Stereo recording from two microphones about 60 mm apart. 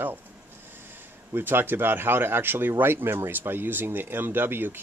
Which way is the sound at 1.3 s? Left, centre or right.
Right.